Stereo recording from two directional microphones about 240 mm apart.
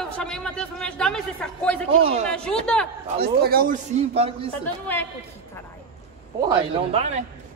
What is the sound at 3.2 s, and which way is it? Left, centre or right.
Speech, right.